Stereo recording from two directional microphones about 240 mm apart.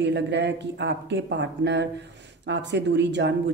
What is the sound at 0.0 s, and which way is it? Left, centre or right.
Speech, right.